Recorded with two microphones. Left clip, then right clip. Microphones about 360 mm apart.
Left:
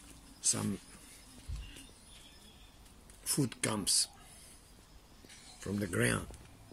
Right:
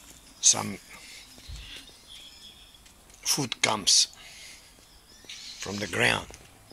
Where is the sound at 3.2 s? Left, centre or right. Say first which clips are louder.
Right 10 dB; centre.